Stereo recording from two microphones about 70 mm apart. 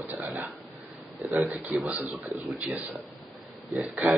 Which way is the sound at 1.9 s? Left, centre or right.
Centre.